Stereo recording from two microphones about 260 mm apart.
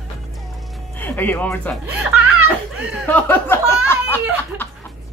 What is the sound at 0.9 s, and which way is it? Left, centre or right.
Speech, centre.